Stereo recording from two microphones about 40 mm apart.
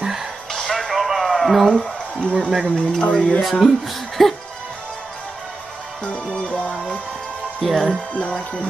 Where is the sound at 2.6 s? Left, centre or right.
Left.